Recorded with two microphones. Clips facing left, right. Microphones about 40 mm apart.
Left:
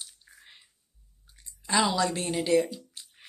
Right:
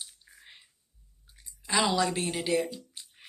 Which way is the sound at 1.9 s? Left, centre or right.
Right.